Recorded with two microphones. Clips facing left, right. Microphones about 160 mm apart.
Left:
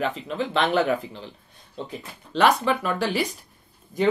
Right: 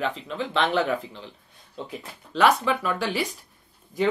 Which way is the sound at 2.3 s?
35° left (ahead or behind).